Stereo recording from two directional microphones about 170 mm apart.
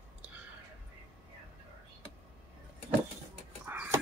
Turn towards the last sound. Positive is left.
turn(degrees=-10)  # may be behind; listen again after turning